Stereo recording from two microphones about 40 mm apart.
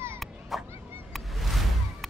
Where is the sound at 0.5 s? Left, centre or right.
Centre.